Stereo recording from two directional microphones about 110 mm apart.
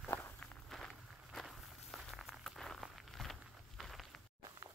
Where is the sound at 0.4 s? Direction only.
5° left (ahead or behind).